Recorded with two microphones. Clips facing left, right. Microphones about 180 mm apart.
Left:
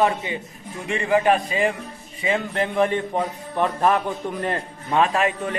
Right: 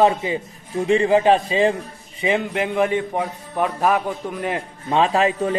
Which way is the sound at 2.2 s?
15° right (ahead or behind).